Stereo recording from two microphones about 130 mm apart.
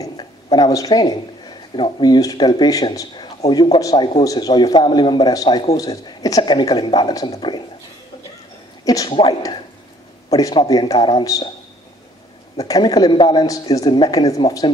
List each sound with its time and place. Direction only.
0.0 s speech: 35° left (ahead or behind)
8.8 s a woman's voice: 30° left (ahead or behind)
9.1 s speech: 45° left (ahead or behind)
10.3 s a woman's voice: 30° left (ahead or behind)
12.5 s a woman's voice: 30° left (ahead or behind)